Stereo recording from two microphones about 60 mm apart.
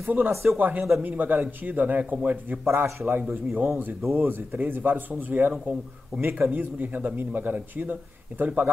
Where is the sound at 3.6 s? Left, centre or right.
Right.